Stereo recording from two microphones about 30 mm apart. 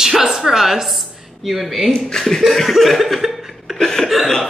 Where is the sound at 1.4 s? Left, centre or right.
Centre.